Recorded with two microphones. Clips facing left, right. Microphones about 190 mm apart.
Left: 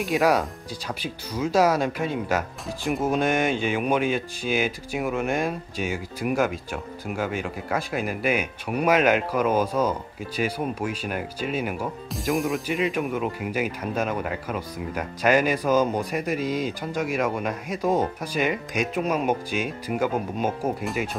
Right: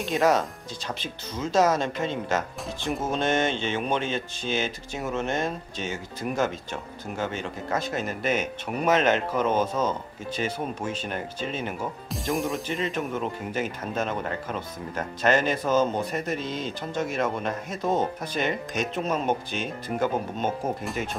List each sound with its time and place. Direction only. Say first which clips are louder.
0.1 s speech: left 1 dB; 15° left (ahead or behind)
12.7 s speech: left 3 dB; 10° left (ahead or behind)